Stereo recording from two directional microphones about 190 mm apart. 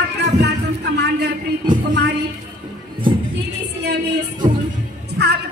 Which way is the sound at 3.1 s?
25° right (ahead or behind).